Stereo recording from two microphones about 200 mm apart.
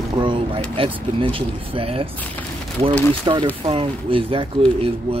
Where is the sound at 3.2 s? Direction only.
25° right (ahead or behind).